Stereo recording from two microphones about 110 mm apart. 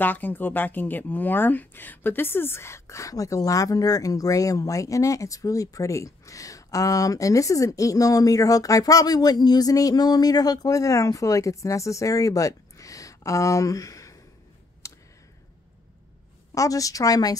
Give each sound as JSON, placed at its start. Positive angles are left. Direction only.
{"t": 0.0, "sound": "speech", "side_deg": 15}
{"t": 14.8, "sound": "a sound", "side_deg": 30}
{"t": 16.5, "sound": "speech", "side_deg": 30}